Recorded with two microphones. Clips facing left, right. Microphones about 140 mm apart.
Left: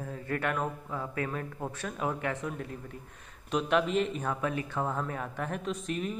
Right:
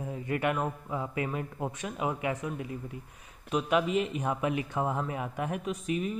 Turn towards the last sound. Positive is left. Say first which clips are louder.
# right 2 dB
turn(degrees=-5)  # may be behind; listen again after turning